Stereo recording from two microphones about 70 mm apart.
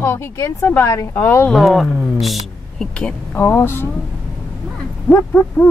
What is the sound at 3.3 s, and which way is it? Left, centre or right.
Speech, left.